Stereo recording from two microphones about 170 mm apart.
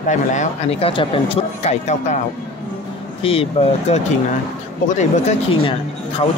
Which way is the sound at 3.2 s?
35° left (ahead or behind).